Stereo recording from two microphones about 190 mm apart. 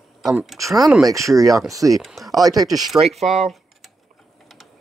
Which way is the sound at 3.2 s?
Centre (ahead or behind).